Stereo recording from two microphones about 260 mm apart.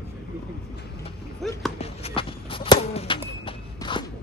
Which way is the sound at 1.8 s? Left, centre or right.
Left.